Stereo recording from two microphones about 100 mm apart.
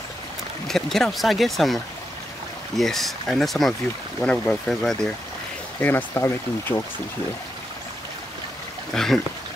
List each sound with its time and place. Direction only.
0.7 s speech: 5° left (ahead or behind)
2.8 s speech: centre (ahead or behind)
5.8 s speech: 20° left (ahead or behind)
8.9 s speech: 5° left (ahead or behind)